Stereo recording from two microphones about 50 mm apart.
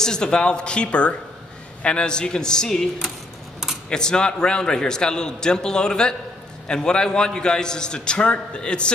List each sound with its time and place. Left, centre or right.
0.0 s a man's voice: centre
3.9 s a man's voice: centre